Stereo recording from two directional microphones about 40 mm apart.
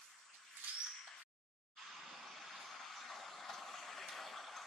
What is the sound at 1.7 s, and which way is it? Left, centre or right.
Vehicle, centre.